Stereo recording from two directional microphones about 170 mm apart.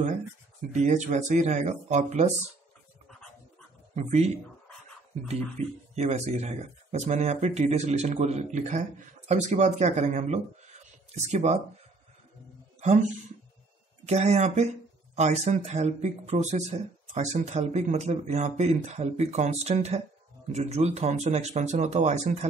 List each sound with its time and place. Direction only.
0.6 s speech: 45° right (ahead or behind)
3.9 s speech: 40° right (ahead or behind)
5.9 s speech: 40° right (ahead or behind)
14.0 s speech: 40° right (ahead or behind)